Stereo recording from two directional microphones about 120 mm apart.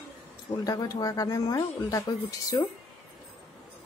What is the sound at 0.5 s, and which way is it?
Speech, 30° left (ahead or behind).